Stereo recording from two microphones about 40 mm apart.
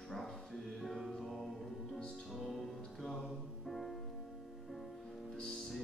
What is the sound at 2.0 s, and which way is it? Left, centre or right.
Music, centre.